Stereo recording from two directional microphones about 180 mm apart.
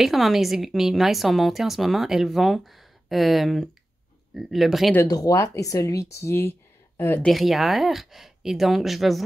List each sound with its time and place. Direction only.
0.0 s a woman's voice: centre (ahead or behind)
4.9 s speech: 20° left (ahead or behind)
7.2 s a woman's voice: centre (ahead or behind)